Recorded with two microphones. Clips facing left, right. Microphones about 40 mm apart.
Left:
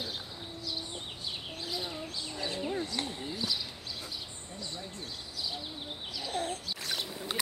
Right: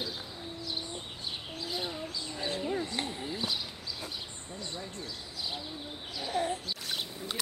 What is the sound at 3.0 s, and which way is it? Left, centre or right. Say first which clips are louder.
Clip-clop: right 1 dB; centre.